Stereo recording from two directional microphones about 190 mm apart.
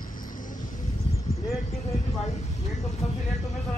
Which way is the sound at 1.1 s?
35° left (ahead or behind).